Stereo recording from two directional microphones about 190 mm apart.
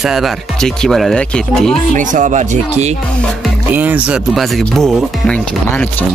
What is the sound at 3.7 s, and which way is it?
Speech, 10° right (ahead or behind).